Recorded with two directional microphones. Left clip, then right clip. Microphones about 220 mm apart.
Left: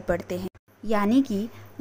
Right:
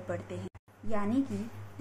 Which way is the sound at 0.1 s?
30° left (ahead or behind).